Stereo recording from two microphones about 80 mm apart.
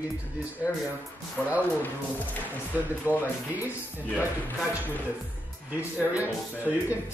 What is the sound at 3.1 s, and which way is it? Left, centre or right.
Speech, right.